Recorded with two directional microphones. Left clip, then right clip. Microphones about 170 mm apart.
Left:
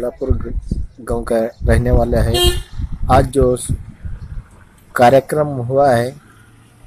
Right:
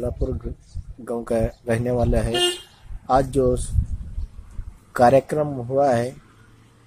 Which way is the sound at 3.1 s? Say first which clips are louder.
Left 6 dB; centre (ahead or behind).